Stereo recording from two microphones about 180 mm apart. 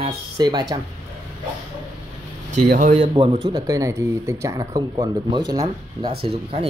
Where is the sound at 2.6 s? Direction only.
50° right (ahead or behind).